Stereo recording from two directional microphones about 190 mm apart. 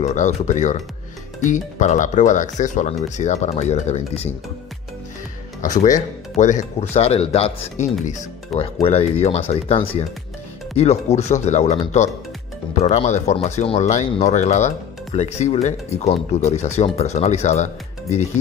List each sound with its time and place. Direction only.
0.0 s speech: 40° left (ahead or behind)
5.6 s speech: 40° left (ahead or behind)